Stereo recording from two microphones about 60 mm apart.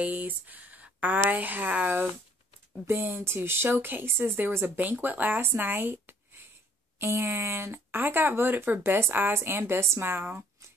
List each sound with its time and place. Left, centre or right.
0.0 s a woman's voice: right